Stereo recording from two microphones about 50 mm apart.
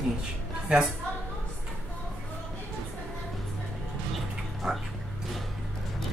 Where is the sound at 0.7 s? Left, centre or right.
Centre.